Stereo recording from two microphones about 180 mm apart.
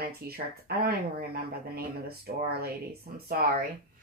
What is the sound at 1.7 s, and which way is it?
Speech, 60° right (ahead or behind).